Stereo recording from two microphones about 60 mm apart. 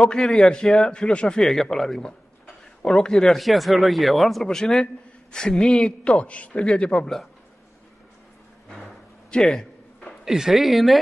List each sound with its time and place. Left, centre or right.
0.0 s a man's voice: centre
3.3 s a man's voice: centre
9.3 s a sound: centre
10.2 s speech: centre